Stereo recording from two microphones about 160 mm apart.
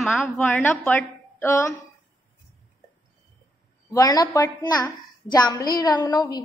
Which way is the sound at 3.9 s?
25° left (ahead or behind).